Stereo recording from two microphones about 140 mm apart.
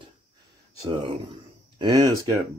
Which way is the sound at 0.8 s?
35° right (ahead or behind).